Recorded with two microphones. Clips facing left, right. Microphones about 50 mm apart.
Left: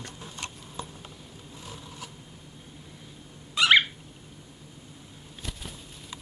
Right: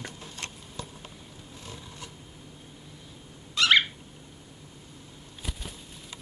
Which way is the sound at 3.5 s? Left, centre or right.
Centre.